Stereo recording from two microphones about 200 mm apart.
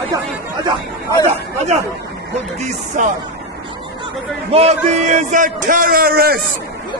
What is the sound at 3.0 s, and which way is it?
Speech, 40° right (ahead or behind).